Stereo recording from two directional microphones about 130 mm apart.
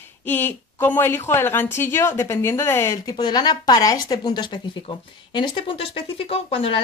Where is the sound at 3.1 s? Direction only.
30° left (ahead or behind).